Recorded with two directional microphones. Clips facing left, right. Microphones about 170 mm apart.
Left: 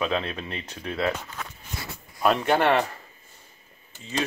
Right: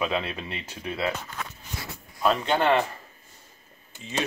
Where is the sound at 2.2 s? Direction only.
5° left (ahead or behind).